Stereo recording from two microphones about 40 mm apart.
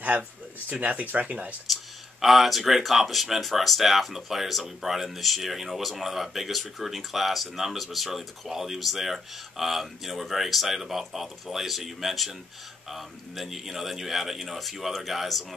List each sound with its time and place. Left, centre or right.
0.7 s speech: right
1.7 s speech: centre